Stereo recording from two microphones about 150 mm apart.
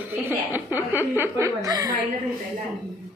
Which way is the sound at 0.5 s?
15° right (ahead or behind).